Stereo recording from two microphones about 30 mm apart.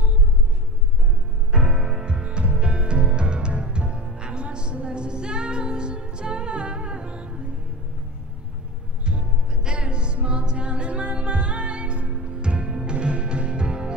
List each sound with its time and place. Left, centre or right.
1.5 s music: right
9.0 s music: right